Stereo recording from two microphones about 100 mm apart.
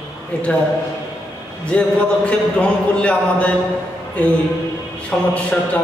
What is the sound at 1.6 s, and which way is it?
A man's voice, 10° left (ahead or behind).